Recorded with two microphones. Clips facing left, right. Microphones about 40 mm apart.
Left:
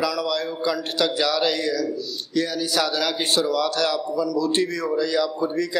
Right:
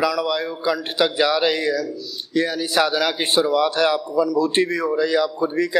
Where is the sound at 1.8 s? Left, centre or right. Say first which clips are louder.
Left 3 dB; centre.